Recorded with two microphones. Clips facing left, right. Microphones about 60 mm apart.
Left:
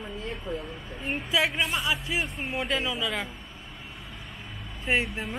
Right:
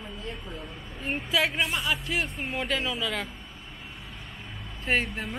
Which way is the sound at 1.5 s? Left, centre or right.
Centre.